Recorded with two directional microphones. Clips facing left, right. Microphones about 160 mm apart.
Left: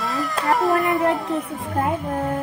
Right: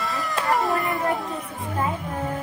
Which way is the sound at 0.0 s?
Centre (ahead or behind).